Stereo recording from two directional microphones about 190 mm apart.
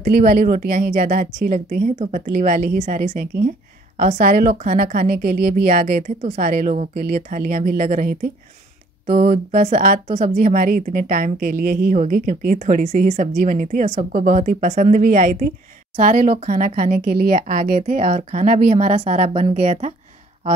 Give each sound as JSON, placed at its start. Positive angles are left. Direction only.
{"t": 0.0, "sound": "a woman's voice", "side_deg": -45}